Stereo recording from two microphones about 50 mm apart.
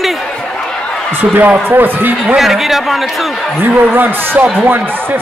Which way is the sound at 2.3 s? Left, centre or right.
Centre.